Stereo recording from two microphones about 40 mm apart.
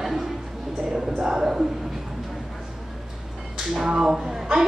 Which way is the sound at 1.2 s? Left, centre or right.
Centre.